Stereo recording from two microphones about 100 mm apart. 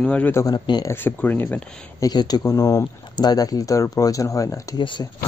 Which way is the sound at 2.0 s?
40° left (ahead or behind).